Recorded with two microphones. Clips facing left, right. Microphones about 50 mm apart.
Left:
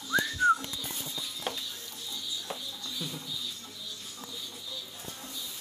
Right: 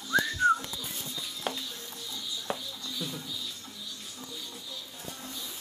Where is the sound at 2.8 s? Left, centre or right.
Centre.